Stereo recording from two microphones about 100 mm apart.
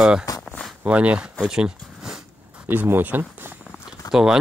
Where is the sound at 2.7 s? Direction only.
20° right (ahead or behind).